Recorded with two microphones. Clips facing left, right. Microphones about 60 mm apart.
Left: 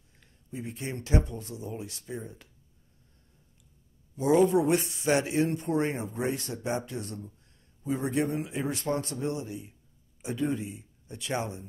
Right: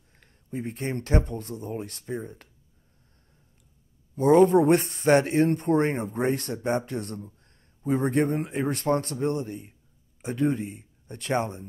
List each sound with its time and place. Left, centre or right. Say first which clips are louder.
0.5 s speech: right 5 dB; right
4.1 s speech: right 5 dB; right